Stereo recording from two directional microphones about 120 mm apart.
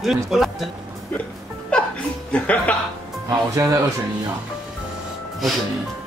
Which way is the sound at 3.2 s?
25° right (ahead or behind).